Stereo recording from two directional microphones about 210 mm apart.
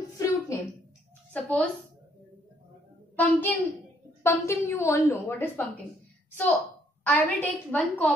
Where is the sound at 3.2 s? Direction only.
10° left (ahead or behind).